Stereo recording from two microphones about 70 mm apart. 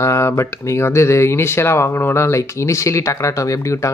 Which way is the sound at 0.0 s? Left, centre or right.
Left.